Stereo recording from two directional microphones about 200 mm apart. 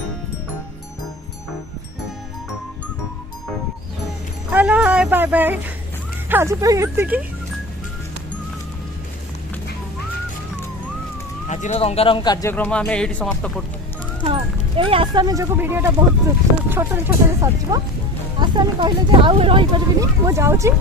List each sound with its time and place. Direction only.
4.5 s speech: 5° right (ahead or behind)
11.4 s speech: 35° left (ahead or behind); by 13.5 s 5° left (ahead or behind)
14.2 s speech: 25° right (ahead or behind)